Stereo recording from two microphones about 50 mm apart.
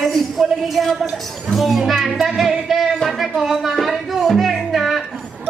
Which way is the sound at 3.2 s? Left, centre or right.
Centre.